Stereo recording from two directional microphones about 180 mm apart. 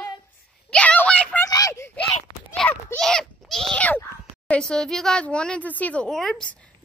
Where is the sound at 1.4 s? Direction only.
20° left (ahead or behind).